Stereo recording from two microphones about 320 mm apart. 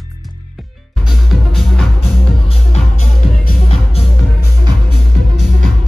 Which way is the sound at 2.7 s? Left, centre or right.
Left.